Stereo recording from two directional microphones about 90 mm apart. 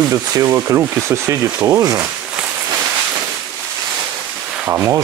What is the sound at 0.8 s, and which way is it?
Speech, 20° right (ahead or behind).